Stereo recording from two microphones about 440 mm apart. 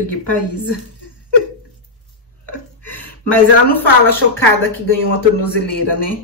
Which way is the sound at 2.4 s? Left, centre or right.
Left.